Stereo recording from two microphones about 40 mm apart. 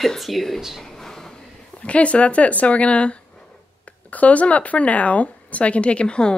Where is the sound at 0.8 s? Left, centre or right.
Centre.